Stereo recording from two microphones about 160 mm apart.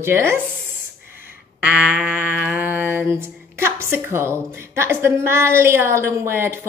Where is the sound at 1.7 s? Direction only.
10° right (ahead or behind).